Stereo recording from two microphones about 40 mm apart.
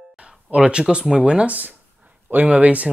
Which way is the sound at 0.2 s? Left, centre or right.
Right.